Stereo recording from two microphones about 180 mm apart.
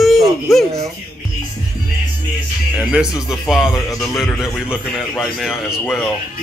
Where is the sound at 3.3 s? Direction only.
Centre (ahead or behind).